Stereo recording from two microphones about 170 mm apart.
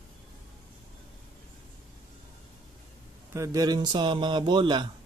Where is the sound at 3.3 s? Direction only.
20° right (ahead or behind).